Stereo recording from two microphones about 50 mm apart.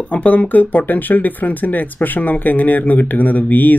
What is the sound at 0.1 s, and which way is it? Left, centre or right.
Speech, left.